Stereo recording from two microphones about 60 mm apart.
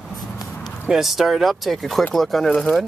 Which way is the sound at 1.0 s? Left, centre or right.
Centre.